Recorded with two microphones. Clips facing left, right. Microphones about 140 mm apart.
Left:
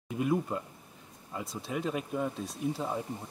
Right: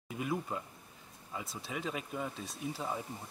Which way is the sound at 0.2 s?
Centre (ahead or behind).